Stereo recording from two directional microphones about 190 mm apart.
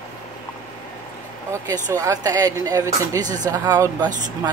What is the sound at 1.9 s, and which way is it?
Speech, 15° right (ahead or behind).